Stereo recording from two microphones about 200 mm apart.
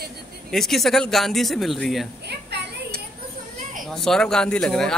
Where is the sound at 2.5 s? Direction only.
55° right (ahead or behind).